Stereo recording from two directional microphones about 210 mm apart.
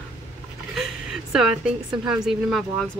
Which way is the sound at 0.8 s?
Centre (ahead or behind).